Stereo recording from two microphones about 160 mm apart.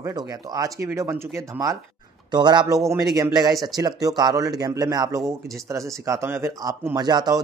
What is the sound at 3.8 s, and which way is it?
A man's voice, 20° right (ahead or behind).